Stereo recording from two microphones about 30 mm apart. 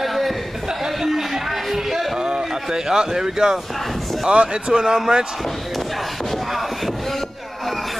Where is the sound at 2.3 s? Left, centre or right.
Centre.